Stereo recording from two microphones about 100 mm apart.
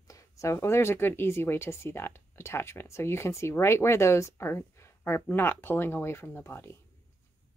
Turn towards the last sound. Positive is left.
turn(degrees=25)  # may be behind; listen again after turning